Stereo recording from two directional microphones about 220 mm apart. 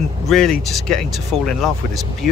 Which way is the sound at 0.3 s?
Centre (ahead or behind).